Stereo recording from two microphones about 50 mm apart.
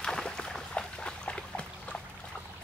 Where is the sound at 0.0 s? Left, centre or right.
Centre.